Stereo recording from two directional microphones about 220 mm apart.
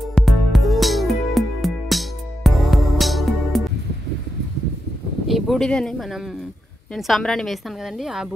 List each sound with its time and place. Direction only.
0.1 s music: centre (ahead or behind)
5.3 s a woman's voice: centre (ahead or behind)